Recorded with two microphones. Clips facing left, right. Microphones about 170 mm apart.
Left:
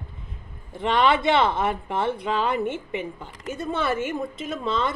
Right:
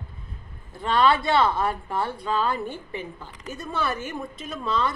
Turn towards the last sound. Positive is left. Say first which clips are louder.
# left 1 dB
turn(degrees=25)  # may be behind; listen again after turning